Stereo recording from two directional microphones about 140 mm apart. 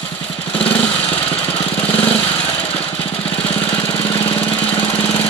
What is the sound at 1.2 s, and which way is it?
Lawn mower, 40° left (ahead or behind).